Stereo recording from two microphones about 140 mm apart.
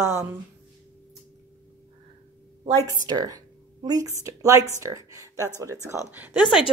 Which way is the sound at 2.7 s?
25° right (ahead or behind).